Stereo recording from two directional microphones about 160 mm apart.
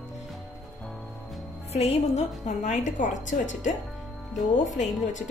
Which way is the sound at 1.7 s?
40° left (ahead or behind).